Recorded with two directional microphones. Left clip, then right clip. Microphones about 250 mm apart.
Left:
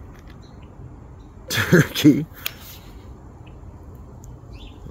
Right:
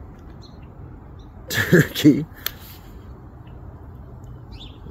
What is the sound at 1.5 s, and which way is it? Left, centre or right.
Speech, left.